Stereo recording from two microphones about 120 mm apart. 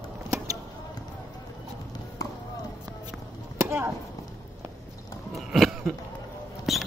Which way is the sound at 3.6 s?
20° right (ahead or behind).